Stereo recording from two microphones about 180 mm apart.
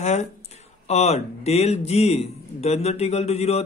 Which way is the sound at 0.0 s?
40° left (ahead or behind).